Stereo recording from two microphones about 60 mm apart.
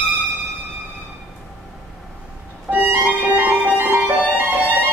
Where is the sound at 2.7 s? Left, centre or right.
Right.